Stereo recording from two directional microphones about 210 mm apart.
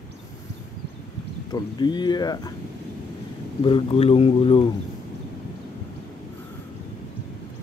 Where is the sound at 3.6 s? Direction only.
25° left (ahead or behind).